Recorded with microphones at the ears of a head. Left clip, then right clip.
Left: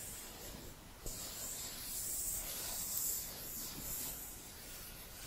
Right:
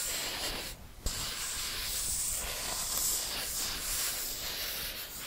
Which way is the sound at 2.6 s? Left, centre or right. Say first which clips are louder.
Right 11 dB; right.